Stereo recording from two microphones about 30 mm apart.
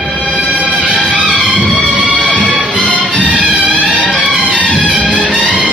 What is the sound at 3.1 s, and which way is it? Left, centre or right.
Music, right.